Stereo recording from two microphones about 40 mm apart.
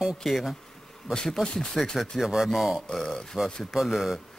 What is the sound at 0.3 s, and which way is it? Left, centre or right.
Speech, centre.